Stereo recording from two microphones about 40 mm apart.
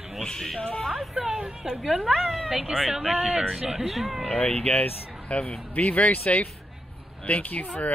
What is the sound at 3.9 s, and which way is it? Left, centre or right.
Speech, centre.